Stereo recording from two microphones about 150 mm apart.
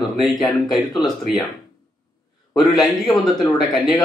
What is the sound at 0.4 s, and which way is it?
Speech, centre (ahead or behind).